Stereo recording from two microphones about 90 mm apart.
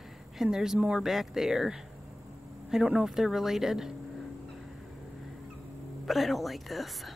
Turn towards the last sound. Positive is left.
turn(degrees=0)  # may be behind; listen again after turning